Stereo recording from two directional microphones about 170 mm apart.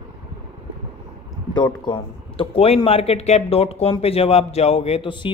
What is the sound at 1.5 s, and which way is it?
A man's voice, 25° left (ahead or behind).